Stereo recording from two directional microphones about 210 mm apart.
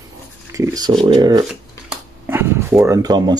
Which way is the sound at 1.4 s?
5° right (ahead or behind).